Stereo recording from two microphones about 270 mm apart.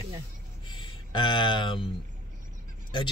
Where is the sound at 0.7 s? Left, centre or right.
Centre.